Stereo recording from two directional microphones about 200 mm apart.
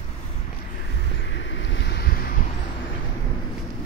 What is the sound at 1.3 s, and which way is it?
Wind, 65° left (ahead or behind).